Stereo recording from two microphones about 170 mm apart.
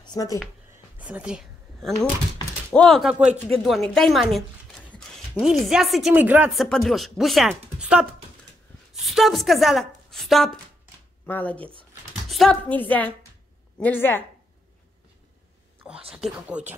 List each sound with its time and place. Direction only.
0.0 s speech: 25° left (ahead or behind)
0.9 s a sound: 10° right (ahead or behind)
2.7 s a woman's voice: 5° left (ahead or behind)
16.1 s speech: 5° right (ahead or behind)